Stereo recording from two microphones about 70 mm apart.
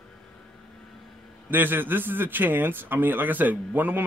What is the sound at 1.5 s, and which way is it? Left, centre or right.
A man's voice, right.